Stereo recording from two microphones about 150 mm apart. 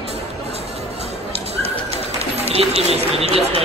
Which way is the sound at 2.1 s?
45° right (ahead or behind).